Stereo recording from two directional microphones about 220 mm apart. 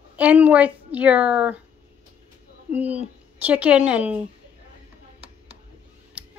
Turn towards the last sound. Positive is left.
turn(degrees=-5)  # may be behind; listen again after turning